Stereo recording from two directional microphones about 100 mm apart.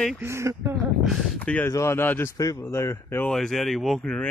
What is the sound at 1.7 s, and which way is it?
Speech, 30° left (ahead or behind).